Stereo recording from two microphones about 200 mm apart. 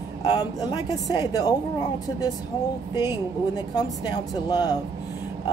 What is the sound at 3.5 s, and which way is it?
Speech, 20° left (ahead or behind).